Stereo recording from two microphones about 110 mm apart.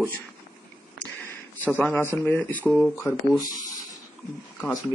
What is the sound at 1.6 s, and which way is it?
Speech, 15° left (ahead or behind).